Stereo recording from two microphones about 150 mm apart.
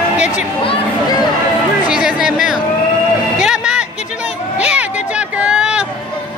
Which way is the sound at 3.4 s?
5° right (ahead or behind).